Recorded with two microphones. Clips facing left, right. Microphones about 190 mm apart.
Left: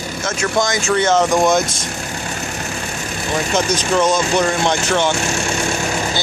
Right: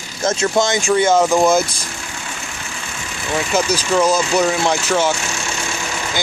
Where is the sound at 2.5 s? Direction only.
45° left (ahead or behind).